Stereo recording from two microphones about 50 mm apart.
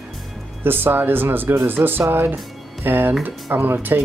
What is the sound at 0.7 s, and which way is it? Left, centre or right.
Speech, right.